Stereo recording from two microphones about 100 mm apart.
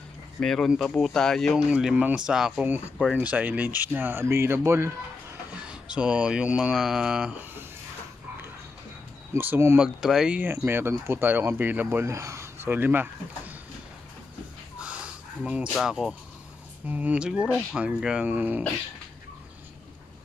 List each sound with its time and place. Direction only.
0.4 s speech: 5° left (ahead or behind)
1.7 s speech: 5° right (ahead or behind); by 4.9 s 25° right (ahead or behind)
5.7 s speech: 10° right (ahead or behind)
9.3 s speech: 25° right (ahead or behind)
9.8 s speech: 5° right (ahead or behind)
10.4 s speech: 20° right (ahead or behind)
15.4 s speech: 10° right (ahead or behind)
16.8 s speech: 15° right (ahead or behind)